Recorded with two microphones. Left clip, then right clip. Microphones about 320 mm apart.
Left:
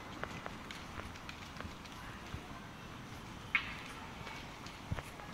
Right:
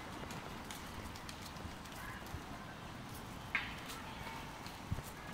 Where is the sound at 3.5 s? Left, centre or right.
Centre.